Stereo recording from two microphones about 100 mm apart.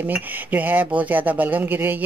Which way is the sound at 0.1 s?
20° right (ahead or behind).